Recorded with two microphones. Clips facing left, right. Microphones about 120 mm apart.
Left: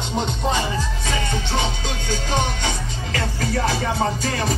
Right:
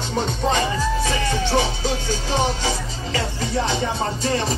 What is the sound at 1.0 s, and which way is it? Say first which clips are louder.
Music: right 3 dB; 35° right (ahead or behind).